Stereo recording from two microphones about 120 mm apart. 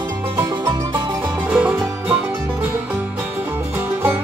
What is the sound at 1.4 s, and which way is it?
Music, 10° right (ahead or behind).